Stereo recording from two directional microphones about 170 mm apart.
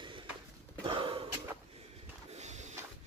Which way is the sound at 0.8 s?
30° right (ahead or behind).